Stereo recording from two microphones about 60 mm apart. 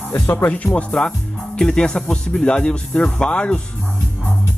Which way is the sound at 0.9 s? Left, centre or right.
Centre.